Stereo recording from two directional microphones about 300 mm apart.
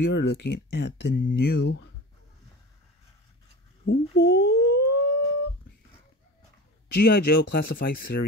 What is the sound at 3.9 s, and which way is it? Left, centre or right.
Speech, left.